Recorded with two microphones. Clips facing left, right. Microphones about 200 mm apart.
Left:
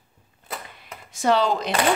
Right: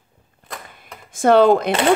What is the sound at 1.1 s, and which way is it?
Speech, 50° right (ahead or behind).